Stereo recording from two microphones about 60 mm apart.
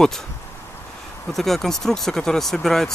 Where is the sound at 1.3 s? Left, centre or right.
Centre.